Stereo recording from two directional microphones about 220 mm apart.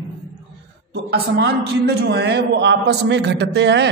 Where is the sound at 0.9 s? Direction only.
50° right (ahead or behind).